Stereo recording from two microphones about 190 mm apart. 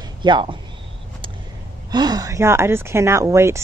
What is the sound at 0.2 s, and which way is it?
Speech, 25° right (ahead or behind).